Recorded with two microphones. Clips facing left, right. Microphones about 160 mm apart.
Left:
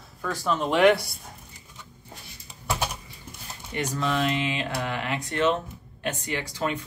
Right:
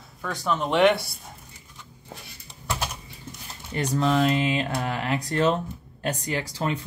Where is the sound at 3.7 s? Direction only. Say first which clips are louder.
Right 4 dB; 35° right (ahead or behind).